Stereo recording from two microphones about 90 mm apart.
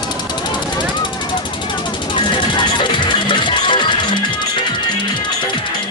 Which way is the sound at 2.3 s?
60° left (ahead or behind).